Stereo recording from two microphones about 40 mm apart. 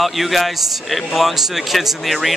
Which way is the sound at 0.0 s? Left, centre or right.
Centre.